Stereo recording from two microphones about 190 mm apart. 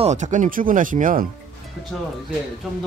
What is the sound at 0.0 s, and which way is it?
Speech, 40° right (ahead or behind).